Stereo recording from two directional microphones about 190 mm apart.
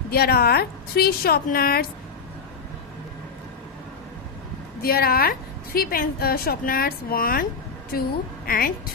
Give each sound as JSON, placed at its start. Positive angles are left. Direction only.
{"t": 0.1, "sound": "a woman's voice", "side_deg": 55}
{"t": 4.8, "sound": "a woman's voice", "side_deg": 50}